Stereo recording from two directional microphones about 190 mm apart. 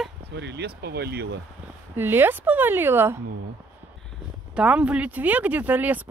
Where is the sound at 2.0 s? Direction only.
10° right (ahead or behind).